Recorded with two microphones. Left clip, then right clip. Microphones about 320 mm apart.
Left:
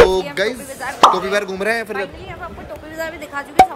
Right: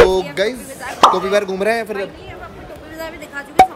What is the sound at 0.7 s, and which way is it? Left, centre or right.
Speech, centre.